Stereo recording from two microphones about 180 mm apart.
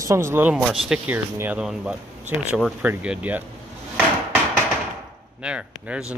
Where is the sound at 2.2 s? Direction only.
40° right (ahead or behind).